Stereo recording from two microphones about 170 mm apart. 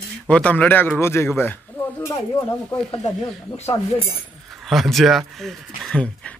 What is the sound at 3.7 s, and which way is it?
Speech, 35° left (ahead or behind).